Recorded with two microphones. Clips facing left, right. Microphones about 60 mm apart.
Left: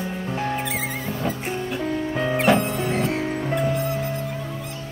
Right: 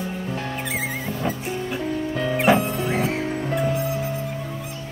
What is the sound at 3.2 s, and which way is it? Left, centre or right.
Music, centre.